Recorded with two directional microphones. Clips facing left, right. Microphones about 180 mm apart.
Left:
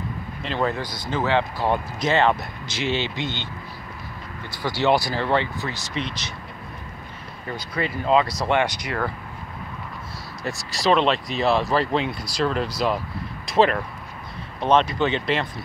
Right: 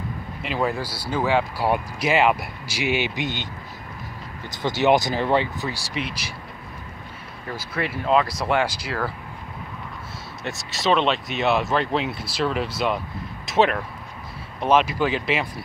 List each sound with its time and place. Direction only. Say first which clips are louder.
0.4 s speech: even; 5° right (ahead or behind)
4.6 s speech: right 2 dB; 20° right (ahead or behind)
7.4 s speech: left 1 dB; 5° right (ahead or behind)
10.7 s speech: left 1 dB; centre (ahead or behind)